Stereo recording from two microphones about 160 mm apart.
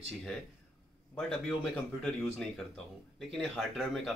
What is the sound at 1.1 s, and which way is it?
Speech, 5° left (ahead or behind).